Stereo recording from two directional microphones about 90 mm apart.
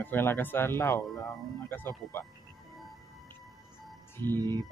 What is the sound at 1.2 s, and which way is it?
Speech, 45° left (ahead or behind).